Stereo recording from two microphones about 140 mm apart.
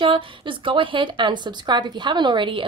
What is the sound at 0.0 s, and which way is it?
A woman's voice, 35° right (ahead or behind).